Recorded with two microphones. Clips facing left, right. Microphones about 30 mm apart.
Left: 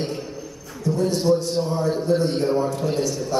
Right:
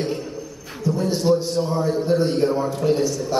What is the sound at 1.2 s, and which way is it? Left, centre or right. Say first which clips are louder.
A man's voice: right 3 dB; right.